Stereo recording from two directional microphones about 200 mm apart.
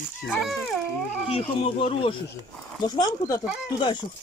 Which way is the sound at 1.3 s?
30° left (ahead or behind).